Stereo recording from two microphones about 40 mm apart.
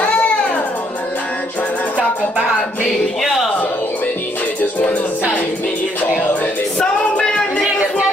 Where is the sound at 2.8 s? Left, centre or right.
Centre.